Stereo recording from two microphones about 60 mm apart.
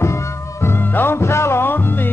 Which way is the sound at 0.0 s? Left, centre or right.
Left.